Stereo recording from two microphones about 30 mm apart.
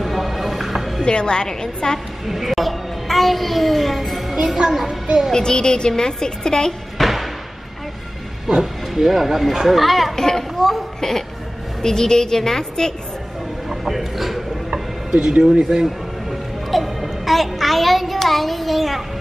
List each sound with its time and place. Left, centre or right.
0.0 s music: centre
1.0 s a woman's voice: left
2.2 s a child's voice: centre
4.6 s a child's voice: centre
5.3 s a woman's voice: left
7.0 s a sound: centre
8.5 s a child's voice: centre
10.1 s a woman's voice: centre
10.6 s speech: centre
11.0 s a woman's voice: centre
13.7 s speech: centre
15.1 s speech: right
15.8 s music: centre